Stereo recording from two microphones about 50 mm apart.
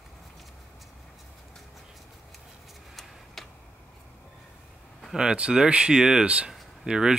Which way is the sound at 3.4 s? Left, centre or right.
Centre.